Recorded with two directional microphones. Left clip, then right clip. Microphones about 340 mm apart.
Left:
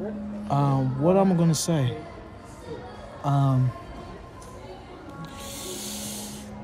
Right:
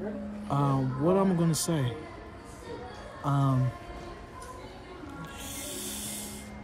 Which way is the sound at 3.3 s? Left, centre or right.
Centre.